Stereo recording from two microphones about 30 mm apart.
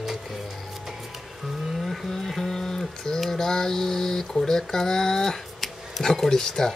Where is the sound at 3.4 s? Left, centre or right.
Centre.